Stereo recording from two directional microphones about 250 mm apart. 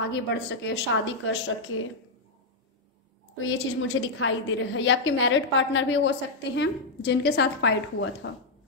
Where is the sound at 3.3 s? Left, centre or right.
Left.